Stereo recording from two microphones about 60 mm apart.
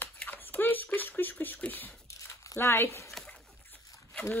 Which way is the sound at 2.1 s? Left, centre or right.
Left.